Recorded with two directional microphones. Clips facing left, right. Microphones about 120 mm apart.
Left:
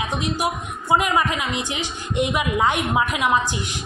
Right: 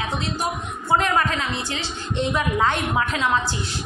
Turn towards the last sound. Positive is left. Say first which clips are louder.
# left 2 dB
turn(degrees=15)  # may be behind; listen again after turning